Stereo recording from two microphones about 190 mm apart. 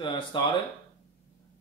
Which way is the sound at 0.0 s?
25° left (ahead or behind).